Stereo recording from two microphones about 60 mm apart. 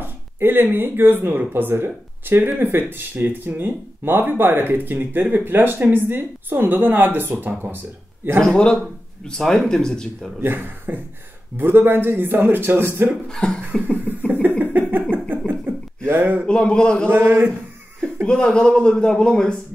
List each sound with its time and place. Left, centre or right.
0.0 s speech: right
9.2 s a man's voice: centre
10.4 s speech: right
13.3 s a man's voice: centre
13.9 s cough: right
16.1 s speech: right
16.4 s a man's voice: centre
17.1 s speech: right
18.2 s a man's voice: centre